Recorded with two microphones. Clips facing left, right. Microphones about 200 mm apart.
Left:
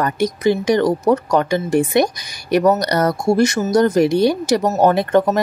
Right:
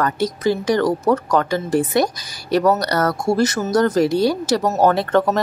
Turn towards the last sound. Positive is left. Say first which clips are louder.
# left 2 dB
turn(degrees=15)  # may be behind; listen again after turning